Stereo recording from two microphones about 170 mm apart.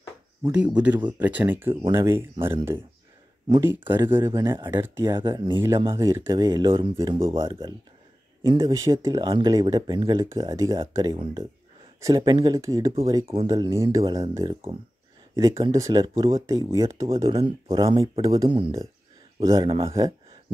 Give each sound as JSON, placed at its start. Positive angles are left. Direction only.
{"t": 0.4, "sound": "speech", "side_deg": -10}
{"t": 7.4, "sound": "speech", "side_deg": -30}
{"t": 17.8, "sound": "speech", "side_deg": -30}
{"t": 19.8, "sound": "a sound", "side_deg": -20}